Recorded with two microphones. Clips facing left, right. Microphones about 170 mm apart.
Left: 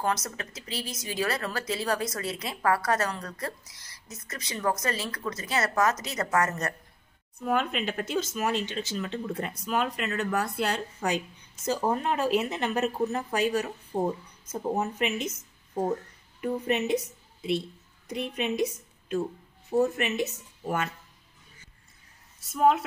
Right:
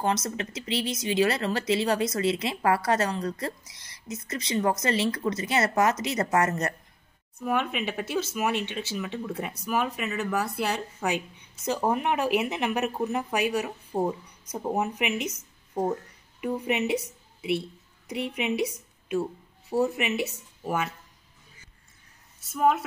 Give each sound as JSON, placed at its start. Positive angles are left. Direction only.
{"t": 0.0, "sound": "a woman's voice", "side_deg": -25}
{"t": 0.7, "sound": "speech", "side_deg": -70}
{"t": 0.9, "sound": "a woman's voice", "side_deg": -25}
{"t": 7.3, "sound": "speech", "side_deg": 0}
{"t": 18.0, "sound": "speech", "side_deg": -10}
{"t": 22.5, "sound": "speech", "side_deg": 0}